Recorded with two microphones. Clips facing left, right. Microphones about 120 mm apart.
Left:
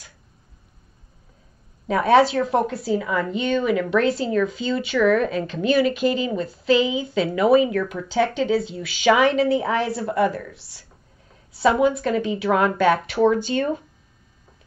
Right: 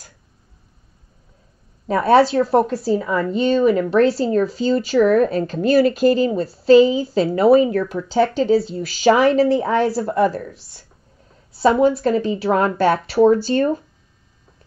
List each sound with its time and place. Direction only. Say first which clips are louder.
1.9 s speech: right 2 dB; 35° right (ahead or behind)